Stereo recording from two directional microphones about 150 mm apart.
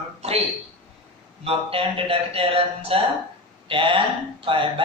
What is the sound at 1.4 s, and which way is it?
Speech, 40° right (ahead or behind).